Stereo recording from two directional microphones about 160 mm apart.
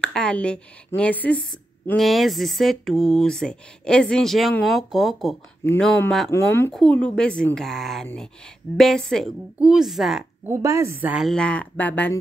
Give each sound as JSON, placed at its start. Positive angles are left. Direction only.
{"t": 0.0, "sound": "speech", "side_deg": 5}
{"t": 6.3, "sound": "speech", "side_deg": 15}
{"t": 6.7, "sound": "speech", "side_deg": 5}
{"t": 10.4, "sound": "a woman's voice", "side_deg": -20}
{"t": 11.2, "sound": "speech", "side_deg": 5}